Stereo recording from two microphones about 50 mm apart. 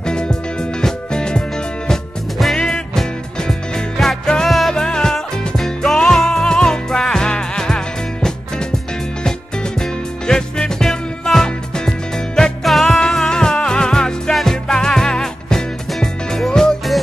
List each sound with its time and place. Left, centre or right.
0.0 s music: centre
2.5 s music: centre
9.8 s music: centre
12.6 s music: centre